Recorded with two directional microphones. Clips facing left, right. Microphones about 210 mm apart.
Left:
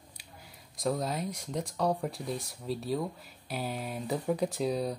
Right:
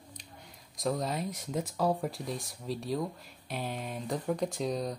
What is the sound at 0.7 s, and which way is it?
Speech, centre (ahead or behind).